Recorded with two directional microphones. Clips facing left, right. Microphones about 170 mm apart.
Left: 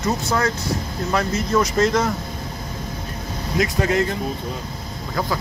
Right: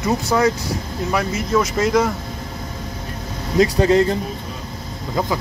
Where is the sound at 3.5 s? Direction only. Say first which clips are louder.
Right 6 dB; 30° right (ahead or behind).